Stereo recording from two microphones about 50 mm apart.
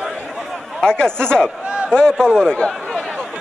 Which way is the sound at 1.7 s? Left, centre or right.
Right.